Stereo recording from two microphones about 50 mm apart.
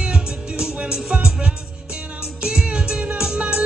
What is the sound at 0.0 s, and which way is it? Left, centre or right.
Music, centre.